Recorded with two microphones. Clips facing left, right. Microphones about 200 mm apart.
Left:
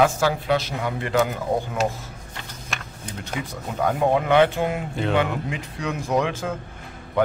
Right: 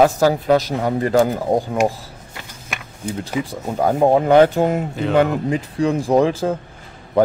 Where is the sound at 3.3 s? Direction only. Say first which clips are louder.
Right 4 dB; 35° right (ahead or behind).